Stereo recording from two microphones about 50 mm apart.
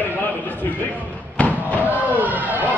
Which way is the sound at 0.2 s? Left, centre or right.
Left.